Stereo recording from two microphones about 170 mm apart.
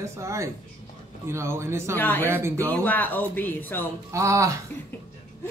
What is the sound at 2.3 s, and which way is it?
Speech, 15° right (ahead or behind).